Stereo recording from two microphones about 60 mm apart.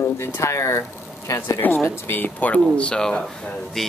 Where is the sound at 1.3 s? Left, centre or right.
Left.